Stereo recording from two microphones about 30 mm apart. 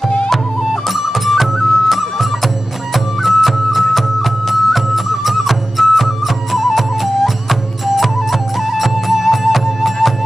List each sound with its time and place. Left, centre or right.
0.8 s music: centre